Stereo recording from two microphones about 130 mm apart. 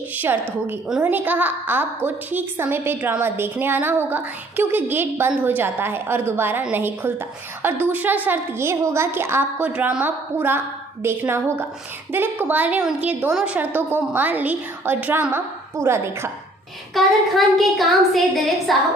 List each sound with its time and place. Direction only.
0.8 s a woman's voice: 10° right (ahead or behind)
16.9 s a woman's voice: centre (ahead or behind)